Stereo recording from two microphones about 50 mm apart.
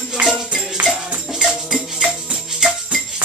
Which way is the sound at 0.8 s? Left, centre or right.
Centre.